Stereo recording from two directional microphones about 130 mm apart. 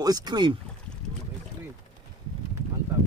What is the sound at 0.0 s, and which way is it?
Speech, 30° right (ahead or behind).